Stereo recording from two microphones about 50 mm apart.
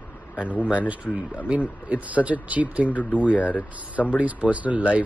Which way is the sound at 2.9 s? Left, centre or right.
Left.